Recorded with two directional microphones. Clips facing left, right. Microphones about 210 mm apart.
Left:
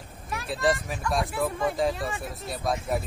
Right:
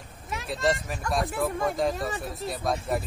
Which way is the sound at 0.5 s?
Centre (ahead or behind).